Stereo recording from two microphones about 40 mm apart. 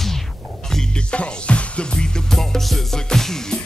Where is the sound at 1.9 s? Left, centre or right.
Centre.